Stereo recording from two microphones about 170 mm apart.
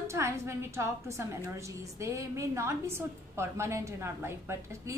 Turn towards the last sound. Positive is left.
turn(degrees=-15)  # may be behind; listen again after turning